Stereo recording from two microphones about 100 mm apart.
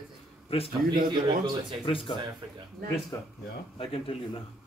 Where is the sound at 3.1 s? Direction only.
30° left (ahead or behind).